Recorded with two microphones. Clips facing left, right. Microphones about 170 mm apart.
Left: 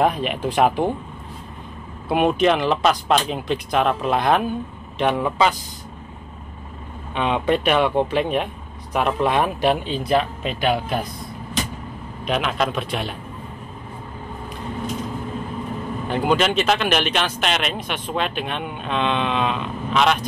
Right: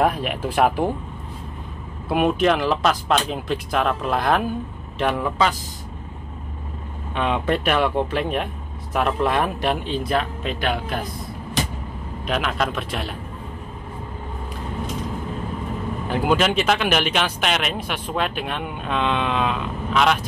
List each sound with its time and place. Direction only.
0.0 s speech: 5° right (ahead or behind)
2.0 s speech: 5° right (ahead or behind)
7.2 s speech: centre (ahead or behind)
12.3 s speech: centre (ahead or behind)
16.1 s speech: 5° right (ahead or behind)